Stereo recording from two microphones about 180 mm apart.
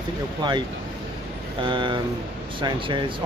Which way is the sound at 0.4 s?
25° right (ahead or behind).